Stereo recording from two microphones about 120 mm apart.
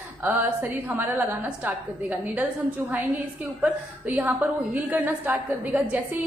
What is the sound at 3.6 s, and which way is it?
A woman's voice, 15° right (ahead or behind).